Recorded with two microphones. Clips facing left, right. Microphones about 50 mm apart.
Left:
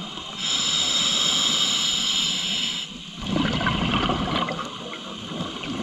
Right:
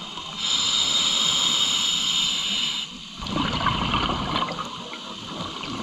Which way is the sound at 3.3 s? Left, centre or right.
Centre.